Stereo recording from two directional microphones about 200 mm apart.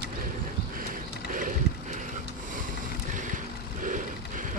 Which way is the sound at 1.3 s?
40° right (ahead or behind).